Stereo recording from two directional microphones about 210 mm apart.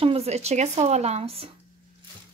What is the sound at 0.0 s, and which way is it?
Speech, 30° right (ahead or behind).